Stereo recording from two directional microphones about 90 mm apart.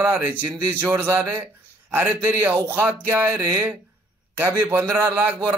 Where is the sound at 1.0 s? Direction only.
30° right (ahead or behind).